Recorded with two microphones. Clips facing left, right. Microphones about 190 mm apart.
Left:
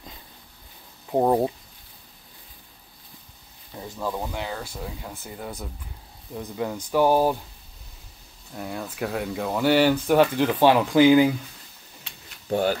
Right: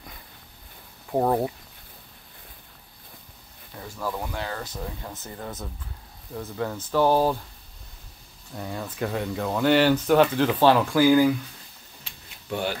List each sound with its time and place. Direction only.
1.1 s speech: 15° left (ahead or behind)
3.8 s speech: 20° left (ahead or behind)
8.5 s speech: 5° left (ahead or behind); by 11.3 s 20° left (ahead or behind)
12.4 s speech: 40° left (ahead or behind)